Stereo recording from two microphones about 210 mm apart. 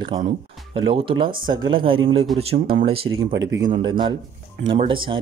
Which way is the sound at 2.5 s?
40° right (ahead or behind).